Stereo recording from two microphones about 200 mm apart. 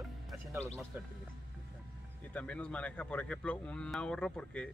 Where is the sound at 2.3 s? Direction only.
5° left (ahead or behind).